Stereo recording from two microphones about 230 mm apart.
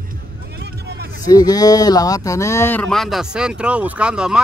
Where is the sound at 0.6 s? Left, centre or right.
Right.